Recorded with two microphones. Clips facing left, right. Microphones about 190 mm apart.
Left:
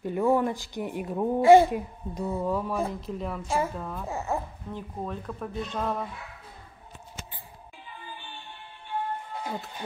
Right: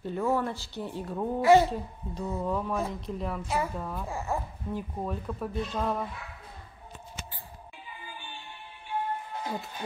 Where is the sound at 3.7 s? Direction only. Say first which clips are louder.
Even; centre (ahead or behind).